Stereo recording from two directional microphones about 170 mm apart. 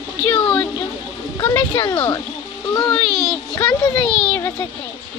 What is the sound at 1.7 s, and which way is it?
Speech, 30° left (ahead or behind).